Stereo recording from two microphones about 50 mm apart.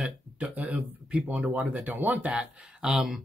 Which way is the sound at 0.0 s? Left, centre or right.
Right.